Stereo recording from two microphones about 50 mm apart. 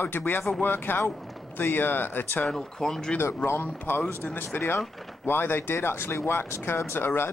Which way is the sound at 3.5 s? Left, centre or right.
Left.